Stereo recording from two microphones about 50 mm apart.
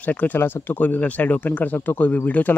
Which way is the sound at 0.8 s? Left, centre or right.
Left.